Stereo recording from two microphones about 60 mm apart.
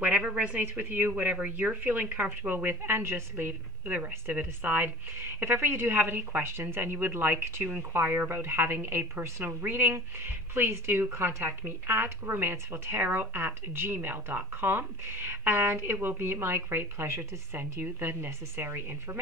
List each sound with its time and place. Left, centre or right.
0.0 s speech: right
5.4 s a woman's voice: right